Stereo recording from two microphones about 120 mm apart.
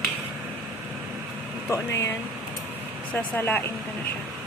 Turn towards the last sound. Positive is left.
turn(degrees=15)  # may be behind; listen again after turning